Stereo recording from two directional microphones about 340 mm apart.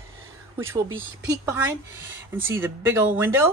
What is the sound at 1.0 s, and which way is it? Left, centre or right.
Speech, centre.